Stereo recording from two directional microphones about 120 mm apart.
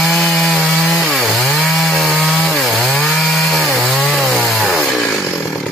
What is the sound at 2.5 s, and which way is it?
Wood, 5° left (ahead or behind).